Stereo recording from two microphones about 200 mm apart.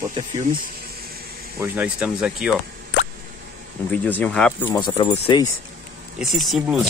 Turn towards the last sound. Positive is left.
turn(degrees=0)  # may be behind; listen again after turning